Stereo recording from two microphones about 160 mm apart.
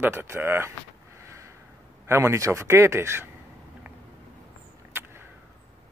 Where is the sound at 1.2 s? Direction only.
20° right (ahead or behind).